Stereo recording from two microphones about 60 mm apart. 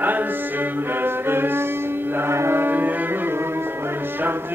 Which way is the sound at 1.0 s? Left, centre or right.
Right.